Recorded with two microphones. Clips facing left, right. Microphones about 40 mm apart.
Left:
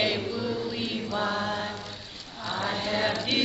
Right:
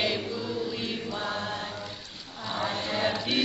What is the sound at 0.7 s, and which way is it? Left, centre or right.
Mantra, centre.